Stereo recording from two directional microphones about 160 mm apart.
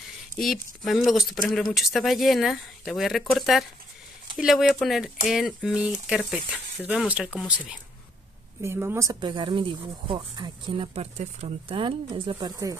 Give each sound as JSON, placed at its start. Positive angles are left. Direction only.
{"t": 0.4, "sound": "speech", "side_deg": 0}